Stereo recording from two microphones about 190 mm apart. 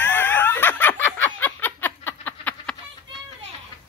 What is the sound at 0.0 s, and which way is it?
Snicker, 10° left (ahead or behind).